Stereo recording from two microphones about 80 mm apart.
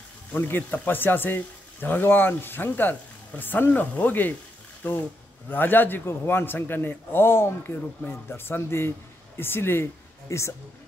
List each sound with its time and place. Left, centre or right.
0.3 s speech: left